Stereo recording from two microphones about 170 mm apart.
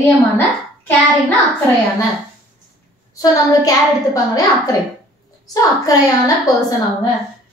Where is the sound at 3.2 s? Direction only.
20° left (ahead or behind).